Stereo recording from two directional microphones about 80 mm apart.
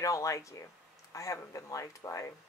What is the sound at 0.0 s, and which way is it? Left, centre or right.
Speech, left.